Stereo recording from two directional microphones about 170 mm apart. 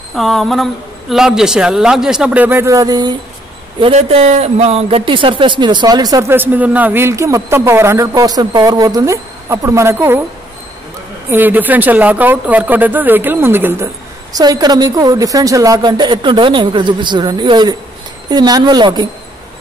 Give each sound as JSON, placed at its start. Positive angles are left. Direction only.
{"t": 0.1, "sound": "a man's voice", "side_deg": 0}
{"t": 3.8, "sound": "speech", "side_deg": -35}
{"t": 11.2, "sound": "speech", "side_deg": -10}